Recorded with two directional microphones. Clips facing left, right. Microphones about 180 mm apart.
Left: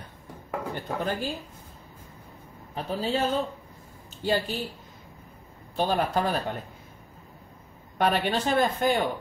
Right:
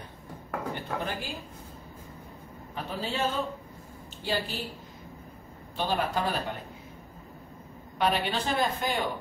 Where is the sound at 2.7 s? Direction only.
35° left (ahead or behind).